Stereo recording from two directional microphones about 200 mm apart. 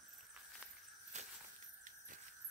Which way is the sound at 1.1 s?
35° right (ahead or behind).